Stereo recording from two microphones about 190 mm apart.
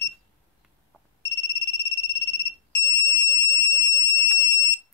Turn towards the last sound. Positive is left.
turn(degrees=15)  # may be behind; listen again after turning